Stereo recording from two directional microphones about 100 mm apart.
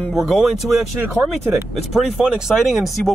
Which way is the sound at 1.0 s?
15° right (ahead or behind).